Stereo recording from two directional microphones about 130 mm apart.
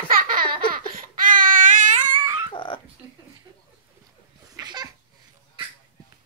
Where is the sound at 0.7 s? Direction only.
90° right.